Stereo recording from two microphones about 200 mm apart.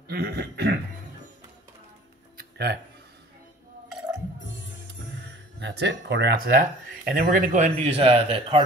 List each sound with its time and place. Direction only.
0.1 s cough: 50° right (ahead or behind)
2.3 s music: 55° right (ahead or behind)
5.6 s speech: 60° right (ahead or behind); by 8.6 s 30° right (ahead or behind)